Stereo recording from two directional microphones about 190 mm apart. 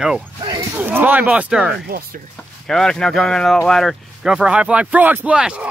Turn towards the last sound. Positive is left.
turn(degrees=-5)  # may be behind; listen again after turning